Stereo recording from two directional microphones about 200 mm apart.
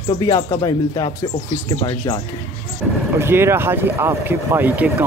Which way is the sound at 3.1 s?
10° right (ahead or behind).